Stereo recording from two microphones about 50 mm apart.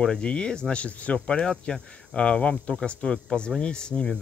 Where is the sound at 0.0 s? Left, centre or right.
Centre.